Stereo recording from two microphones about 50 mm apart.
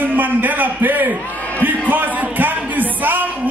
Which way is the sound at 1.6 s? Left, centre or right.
Right.